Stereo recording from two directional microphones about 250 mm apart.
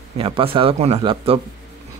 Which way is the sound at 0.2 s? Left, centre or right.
Right.